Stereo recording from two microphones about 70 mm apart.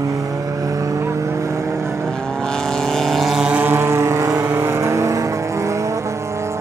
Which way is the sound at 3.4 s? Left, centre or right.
Right.